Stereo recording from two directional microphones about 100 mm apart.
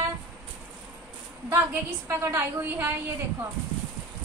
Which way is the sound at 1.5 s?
30° right (ahead or behind).